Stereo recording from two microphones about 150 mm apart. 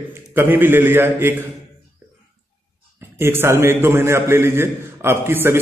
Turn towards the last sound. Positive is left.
turn(degrees=-15)  # may be behind; listen again after turning